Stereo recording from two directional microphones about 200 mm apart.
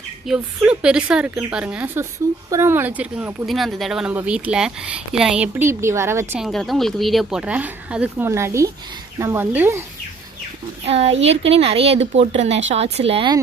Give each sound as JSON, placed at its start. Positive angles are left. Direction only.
{"t": 0.6, "sound": "speech", "side_deg": -5}
{"t": 6.4, "sound": "speech", "side_deg": 0}
{"t": 10.9, "sound": "a woman's voice", "side_deg": -30}